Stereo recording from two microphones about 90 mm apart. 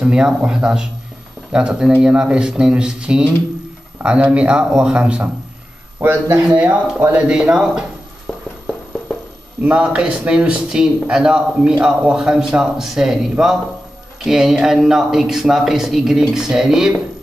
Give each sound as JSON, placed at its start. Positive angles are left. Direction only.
{"t": 0.0, "sound": "a man's voice", "side_deg": -10}
{"t": 6.5, "sound": "a man's voice", "side_deg": -15}
{"t": 7.0, "sound": "speech", "side_deg": -25}
{"t": 7.2, "sound": "a man's voice", "side_deg": -10}
{"t": 9.6, "sound": "a man's voice", "side_deg": -15}